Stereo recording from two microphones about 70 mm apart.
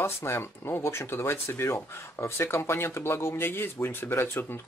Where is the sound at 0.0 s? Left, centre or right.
Left.